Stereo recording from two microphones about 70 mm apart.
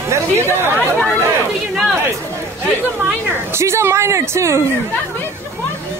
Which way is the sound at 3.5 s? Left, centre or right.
Right.